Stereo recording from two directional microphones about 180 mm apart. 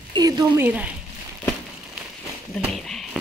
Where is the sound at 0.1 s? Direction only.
20° right (ahead or behind).